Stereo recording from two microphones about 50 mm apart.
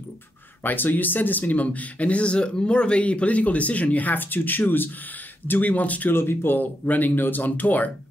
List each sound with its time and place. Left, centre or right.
0.7 s speech: left
6.1 s speech: left